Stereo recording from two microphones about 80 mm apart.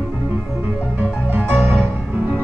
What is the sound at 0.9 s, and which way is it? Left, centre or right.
Music, centre.